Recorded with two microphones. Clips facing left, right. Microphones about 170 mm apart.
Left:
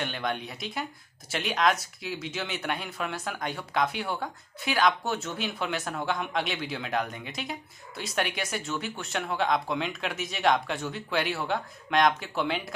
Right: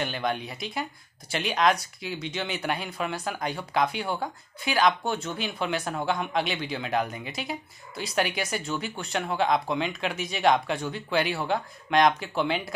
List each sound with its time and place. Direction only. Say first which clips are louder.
0.0 s speech: right 3 dB; centre (ahead or behind)